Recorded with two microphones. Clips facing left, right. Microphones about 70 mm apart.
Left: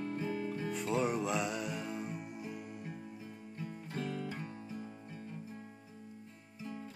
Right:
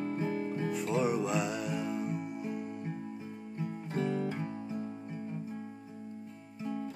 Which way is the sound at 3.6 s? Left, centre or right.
Right.